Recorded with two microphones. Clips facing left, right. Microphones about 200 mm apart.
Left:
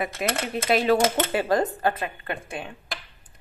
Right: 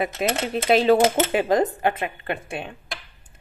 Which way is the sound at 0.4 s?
25° right (ahead or behind).